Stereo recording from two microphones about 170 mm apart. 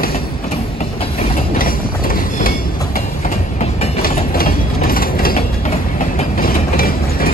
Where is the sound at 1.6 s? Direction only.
55° left (ahead or behind); by 4.0 s 40° left (ahead or behind).